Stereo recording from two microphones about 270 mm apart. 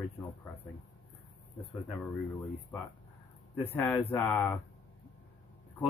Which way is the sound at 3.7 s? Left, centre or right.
Centre.